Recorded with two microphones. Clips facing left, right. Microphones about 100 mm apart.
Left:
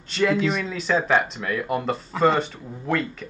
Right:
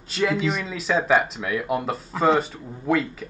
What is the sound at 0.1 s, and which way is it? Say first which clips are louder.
Speech: left 2 dB; centre (ahead or behind).